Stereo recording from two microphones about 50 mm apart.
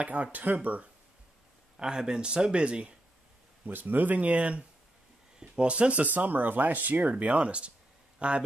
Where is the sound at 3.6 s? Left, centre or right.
Right.